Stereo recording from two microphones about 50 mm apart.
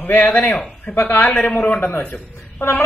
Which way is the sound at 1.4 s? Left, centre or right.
Left.